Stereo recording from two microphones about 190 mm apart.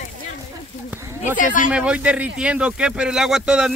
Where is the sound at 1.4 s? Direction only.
45° left (ahead or behind).